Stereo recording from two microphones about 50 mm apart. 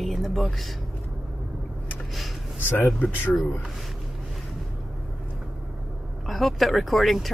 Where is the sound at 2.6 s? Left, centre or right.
Left.